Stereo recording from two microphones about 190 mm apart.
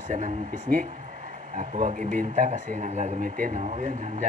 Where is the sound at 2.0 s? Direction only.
10° left (ahead or behind).